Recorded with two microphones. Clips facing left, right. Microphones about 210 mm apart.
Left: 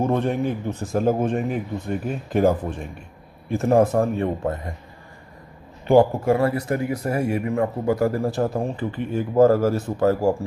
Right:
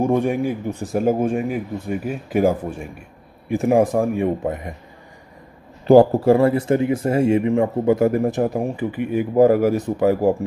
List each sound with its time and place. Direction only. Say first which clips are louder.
0.0 s speech: right 3 dB; 10° right (ahead or behind)
5.9 s speech: right 4 dB; 35° right (ahead or behind); by 10.3 s 15° right (ahead or behind)